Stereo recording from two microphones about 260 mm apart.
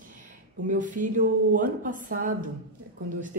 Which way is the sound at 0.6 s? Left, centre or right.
Right.